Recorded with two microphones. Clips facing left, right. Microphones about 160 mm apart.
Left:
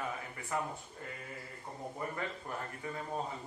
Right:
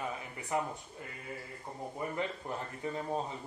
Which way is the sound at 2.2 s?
20° right (ahead or behind).